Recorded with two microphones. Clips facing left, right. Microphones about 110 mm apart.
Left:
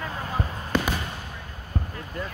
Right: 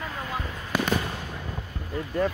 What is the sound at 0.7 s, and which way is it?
Fireworks, 10° right (ahead or behind).